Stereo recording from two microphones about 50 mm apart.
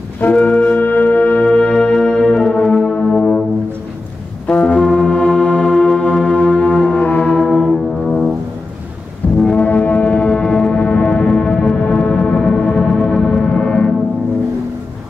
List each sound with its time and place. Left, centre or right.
0.5 s music: left; by 3.3 s centre
4.5 s music: left
6.3 s music: left
7.3 s music: centre
9.2 s music: left
9.6 s foghorn: left; by 13.9 s centre